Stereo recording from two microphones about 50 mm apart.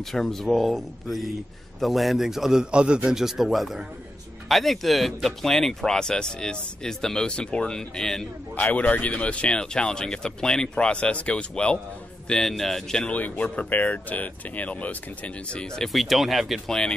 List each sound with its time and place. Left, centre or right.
0.1 s speech: centre
2.6 s a man's voice: centre
3.2 s speech: centre
8.5 s speech: left
12.3 s speech: centre
13.1 s speech: left
15.9 s speech: centre
16.6 s speech: centre